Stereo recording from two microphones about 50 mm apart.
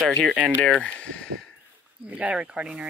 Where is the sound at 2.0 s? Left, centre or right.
Right.